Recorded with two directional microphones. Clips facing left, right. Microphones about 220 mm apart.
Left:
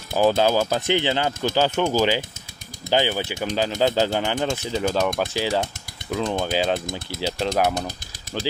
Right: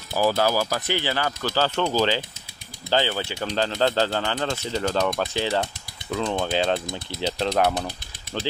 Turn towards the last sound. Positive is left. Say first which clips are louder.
# even
turn(degrees=5)  # may be behind; listen again after turning